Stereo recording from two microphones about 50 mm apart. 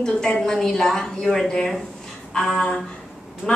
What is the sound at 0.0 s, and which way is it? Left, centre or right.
Speech, centre.